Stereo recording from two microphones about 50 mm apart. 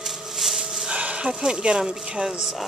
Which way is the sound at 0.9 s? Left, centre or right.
Right.